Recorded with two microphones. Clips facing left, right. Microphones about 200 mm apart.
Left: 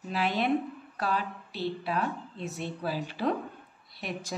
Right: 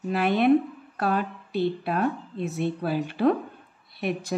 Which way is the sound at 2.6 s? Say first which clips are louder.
Right 7 dB; 55° right (ahead or behind).